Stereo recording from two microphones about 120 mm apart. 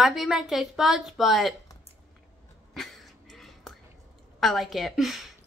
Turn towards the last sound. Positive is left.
turn(degrees=0)  # may be behind; listen again after turning